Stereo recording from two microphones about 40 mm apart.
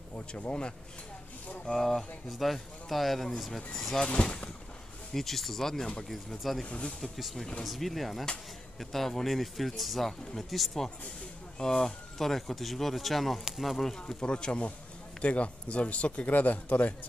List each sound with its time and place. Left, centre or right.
0.3 s speech: left
1.7 s speech: centre
4.0 s speech: left
5.1 s speech: centre
6.6 s speech: left
7.0 s speech: centre
11.5 s speech: centre
13.9 s speech: left
16.3 s speech: left